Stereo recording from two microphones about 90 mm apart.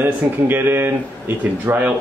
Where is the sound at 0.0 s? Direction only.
25° right (ahead or behind).